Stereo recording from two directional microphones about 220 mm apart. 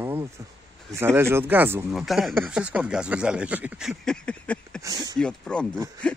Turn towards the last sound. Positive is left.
turn(degrees=5)  # may be behind; listen again after turning